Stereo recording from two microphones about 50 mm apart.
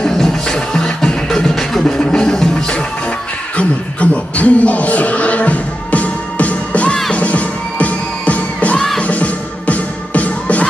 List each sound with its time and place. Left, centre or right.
0.0 s music: centre
2.0 s music: centre
3.5 s a sound: left
7.2 s music: left